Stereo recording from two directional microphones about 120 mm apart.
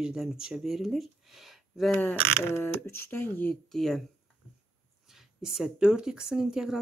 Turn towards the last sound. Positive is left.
turn(degrees=-5)  # may be behind; listen again after turning